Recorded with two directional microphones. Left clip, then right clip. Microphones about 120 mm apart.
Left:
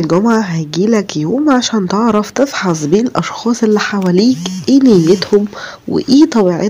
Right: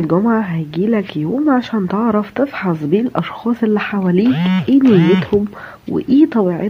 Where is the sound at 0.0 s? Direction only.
20° left (ahead or behind).